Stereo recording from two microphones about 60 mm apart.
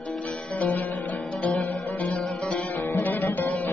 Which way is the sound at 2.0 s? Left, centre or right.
Left.